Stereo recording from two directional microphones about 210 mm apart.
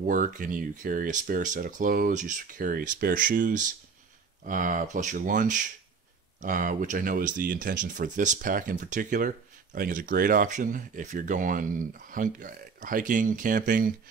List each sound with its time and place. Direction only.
0.0 s speech: 40° right (ahead or behind)